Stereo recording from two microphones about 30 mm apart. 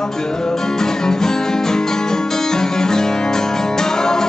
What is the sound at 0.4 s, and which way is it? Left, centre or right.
Music, centre.